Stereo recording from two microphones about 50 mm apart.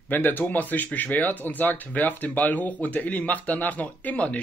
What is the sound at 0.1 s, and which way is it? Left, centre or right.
Speech, left.